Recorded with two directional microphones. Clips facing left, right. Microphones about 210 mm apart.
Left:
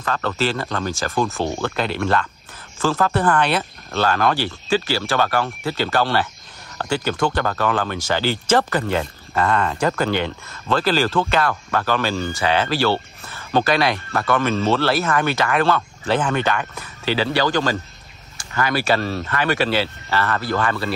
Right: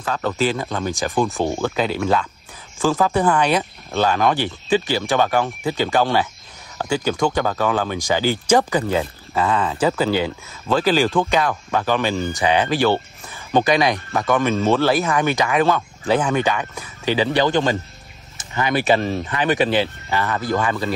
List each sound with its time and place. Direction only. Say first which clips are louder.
0.0 s speech: right 1 dB; 10° right (ahead or behind)